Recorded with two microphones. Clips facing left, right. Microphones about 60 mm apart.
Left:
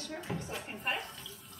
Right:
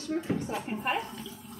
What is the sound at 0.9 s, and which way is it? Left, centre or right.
Water tap, centre.